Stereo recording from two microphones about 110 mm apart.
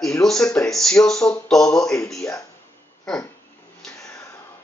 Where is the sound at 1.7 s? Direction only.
30° left (ahead or behind).